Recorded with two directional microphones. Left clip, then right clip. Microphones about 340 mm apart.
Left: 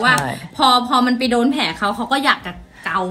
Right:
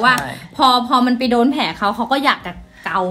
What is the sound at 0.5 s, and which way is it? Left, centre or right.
A woman's voice, right.